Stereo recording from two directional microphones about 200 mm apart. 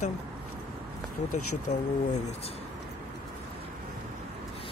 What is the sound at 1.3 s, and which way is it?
Speech, 90° left.